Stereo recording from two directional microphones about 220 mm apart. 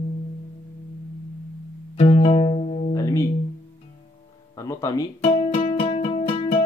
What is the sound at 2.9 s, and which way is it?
Music, 15° left (ahead or behind).